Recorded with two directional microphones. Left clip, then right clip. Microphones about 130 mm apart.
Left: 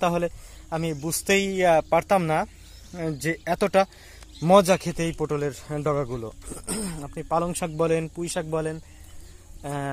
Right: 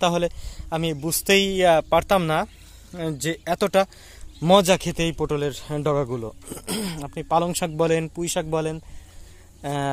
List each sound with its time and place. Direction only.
0.0 s speech: 25° right (ahead or behind)
0.7 s speech: 60° right (ahead or behind); by 2.5 s 45° right (ahead or behind)
2.9 s speech: 20° right (ahead or behind)
3.4 s speech: 10° right (ahead or behind)
4.5 s speech: 20° right (ahead or behind)
5.2 s speech: 50° right (ahead or behind)
6.6 s speech: 75° right (ahead or behind)
7.6 s speech: 45° right (ahead or behind); by 8.8 s 70° right (ahead or behind)
9.6 s speech: 90° right